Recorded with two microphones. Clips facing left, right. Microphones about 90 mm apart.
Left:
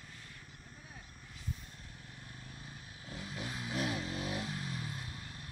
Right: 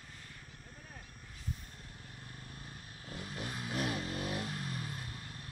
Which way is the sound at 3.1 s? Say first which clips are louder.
Even; 5° left (ahead or behind).